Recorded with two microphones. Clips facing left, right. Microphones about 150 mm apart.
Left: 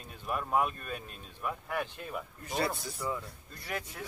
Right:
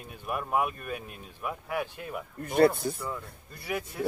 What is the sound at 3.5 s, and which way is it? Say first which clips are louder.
Speech: right 5 dB; 10° right (ahead or behind).